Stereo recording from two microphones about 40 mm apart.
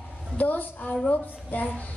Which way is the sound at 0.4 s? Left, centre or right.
Left.